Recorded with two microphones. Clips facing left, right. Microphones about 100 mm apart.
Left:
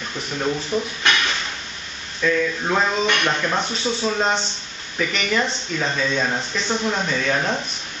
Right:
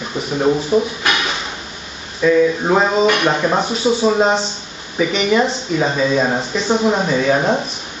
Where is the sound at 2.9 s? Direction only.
35° right (ahead or behind).